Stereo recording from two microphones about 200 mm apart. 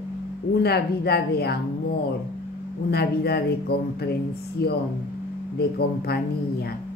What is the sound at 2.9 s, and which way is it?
A woman's voice, 55° left (ahead or behind).